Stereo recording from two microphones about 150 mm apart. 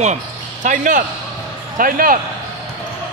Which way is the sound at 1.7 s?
70° right (ahead or behind).